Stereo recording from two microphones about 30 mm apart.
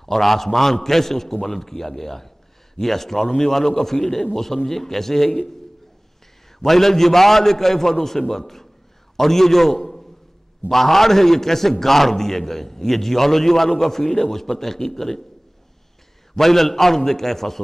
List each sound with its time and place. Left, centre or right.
0.0 s a man's voice: centre
6.6 s a man's voice: centre
9.8 s a sound: centre
10.7 s a man's voice: centre
16.3 s a man's voice: centre